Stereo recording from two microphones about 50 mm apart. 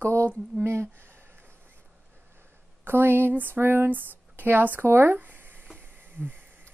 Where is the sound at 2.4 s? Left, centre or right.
Right.